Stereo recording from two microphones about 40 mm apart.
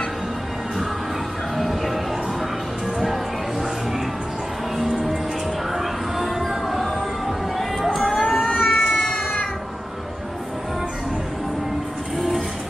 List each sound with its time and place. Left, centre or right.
1.6 s a sound: centre
5.7 s music: centre
8.2 s cat: centre
12.2 s music: centre